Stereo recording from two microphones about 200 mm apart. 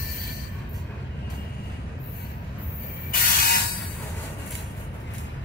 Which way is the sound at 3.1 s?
50° left (ahead or behind).